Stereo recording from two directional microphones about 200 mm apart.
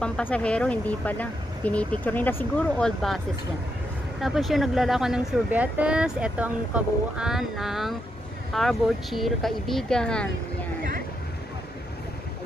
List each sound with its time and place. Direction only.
0.0 s speech: 5° left (ahead or behind)
4.2 s speech: centre (ahead or behind)